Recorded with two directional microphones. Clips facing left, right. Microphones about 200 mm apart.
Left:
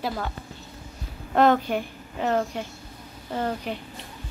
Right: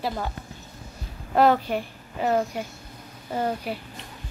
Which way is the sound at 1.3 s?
5° right (ahead or behind).